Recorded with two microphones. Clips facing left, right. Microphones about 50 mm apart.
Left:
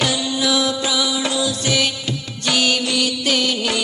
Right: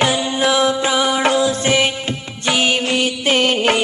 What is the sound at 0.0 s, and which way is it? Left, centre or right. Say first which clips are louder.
Music: right 4 dB; right.